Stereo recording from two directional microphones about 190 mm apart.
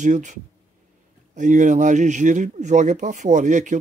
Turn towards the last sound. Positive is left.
turn(degrees=-40)  # may be behind; listen again after turning